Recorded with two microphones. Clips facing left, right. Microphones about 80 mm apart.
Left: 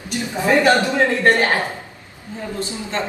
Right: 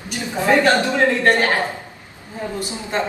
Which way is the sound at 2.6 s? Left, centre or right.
Centre.